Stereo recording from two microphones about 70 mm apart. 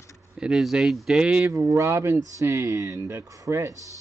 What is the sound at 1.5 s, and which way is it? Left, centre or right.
Speech, right.